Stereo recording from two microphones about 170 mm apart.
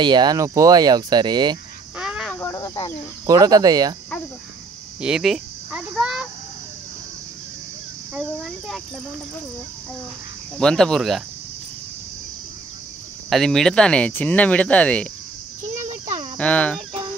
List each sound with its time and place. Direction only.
0.0 s speech: 25° right (ahead or behind)
2.0 s a sound: 5° right (ahead or behind)
2.3 s cricket: 15° left (ahead or behind)
3.3 s speech: 20° right (ahead or behind)
5.0 s speech: centre (ahead or behind)
8.1 s a child's voice: centre (ahead or behind)
10.6 s a child's voice: 5° left (ahead or behind)
13.3 s speech: centre (ahead or behind)
15.7 s insect: 45° right (ahead or behind)
16.3 s speech: 5° left (ahead or behind)